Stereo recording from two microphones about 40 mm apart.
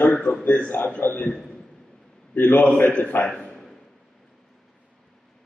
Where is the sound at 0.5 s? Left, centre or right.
Left.